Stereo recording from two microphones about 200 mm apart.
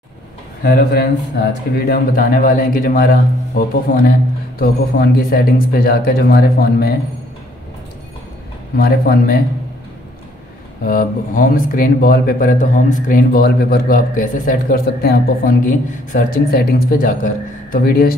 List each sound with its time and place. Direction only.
0.6 s speech: 50° left (ahead or behind)
8.7 s speech: 50° left (ahead or behind)
10.9 s speech: 45° left (ahead or behind)